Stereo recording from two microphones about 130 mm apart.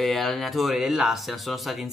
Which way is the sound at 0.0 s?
Centre (ahead or behind).